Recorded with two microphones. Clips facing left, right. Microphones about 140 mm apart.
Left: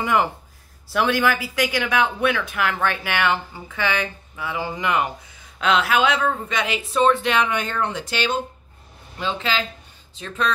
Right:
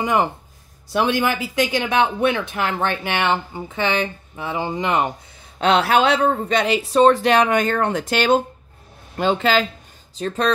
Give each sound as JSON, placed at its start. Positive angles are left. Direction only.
{"t": 0.0, "sound": "a man's voice", "side_deg": -20}
{"t": 10.1, "sound": "speech", "side_deg": -40}